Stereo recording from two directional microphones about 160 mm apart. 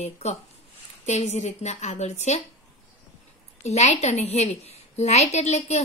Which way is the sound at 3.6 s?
45° left (ahead or behind).